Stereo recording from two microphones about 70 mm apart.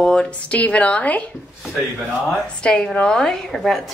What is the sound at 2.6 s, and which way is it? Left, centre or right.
A woman's voice, centre.